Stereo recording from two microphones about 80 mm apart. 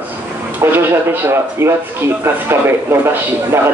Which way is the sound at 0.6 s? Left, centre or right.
Right.